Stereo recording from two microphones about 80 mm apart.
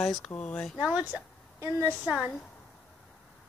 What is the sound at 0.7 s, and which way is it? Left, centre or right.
Speech, centre.